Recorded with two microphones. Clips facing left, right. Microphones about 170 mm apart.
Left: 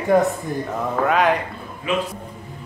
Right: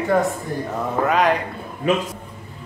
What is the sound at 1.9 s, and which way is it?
Speech, 40° right (ahead or behind).